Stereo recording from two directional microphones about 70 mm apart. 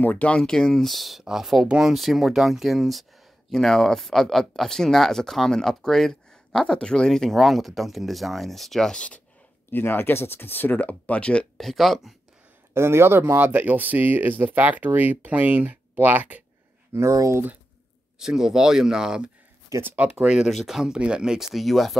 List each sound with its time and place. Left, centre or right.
0.0 s speech: left
0.4 s speech: centre
9.7 s speech: left
11.5 s speech: centre
12.7 s speech: right
16.9 s speech: right
18.2 s speech: centre
19.7 s speech: right
20.1 s speech: centre